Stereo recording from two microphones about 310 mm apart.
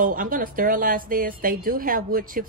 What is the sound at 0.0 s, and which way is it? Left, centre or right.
A woman's voice, right.